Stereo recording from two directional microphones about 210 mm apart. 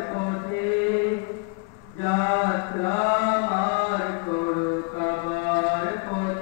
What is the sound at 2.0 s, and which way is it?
Mantra, 20° left (ahead or behind).